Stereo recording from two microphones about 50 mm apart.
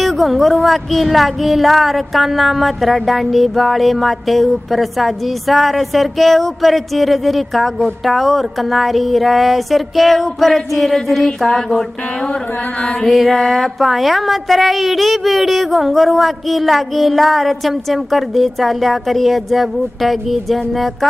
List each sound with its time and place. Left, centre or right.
0.0 s speech: centre